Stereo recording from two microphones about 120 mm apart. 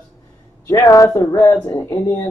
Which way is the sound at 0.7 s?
30° left (ahead or behind).